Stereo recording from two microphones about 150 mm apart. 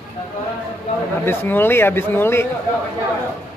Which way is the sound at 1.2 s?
15° left (ahead or behind).